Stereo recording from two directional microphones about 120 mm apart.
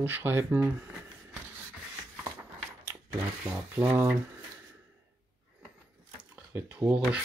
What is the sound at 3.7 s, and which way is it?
Speech, 15° right (ahead or behind).